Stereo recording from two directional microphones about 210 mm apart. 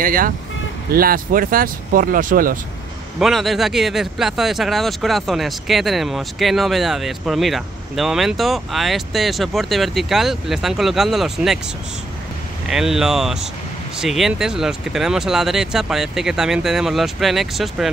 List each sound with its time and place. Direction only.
0.0 s speech: 40° right (ahead or behind)
3.2 s speech: centre (ahead or behind)
12.6 s speech: centre (ahead or behind)